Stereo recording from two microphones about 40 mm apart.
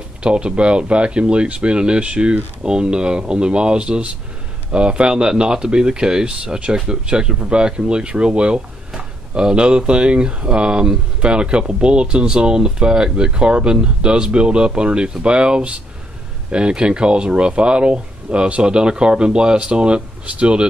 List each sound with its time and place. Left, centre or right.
0.2 s speech: right